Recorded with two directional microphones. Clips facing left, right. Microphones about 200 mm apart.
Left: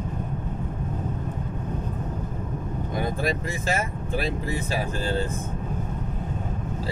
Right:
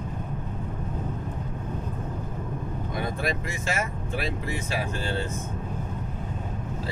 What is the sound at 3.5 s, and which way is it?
Speech, 35° left (ahead or behind).